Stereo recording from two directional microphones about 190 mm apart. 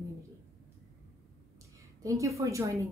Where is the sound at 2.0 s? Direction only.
15° right (ahead or behind).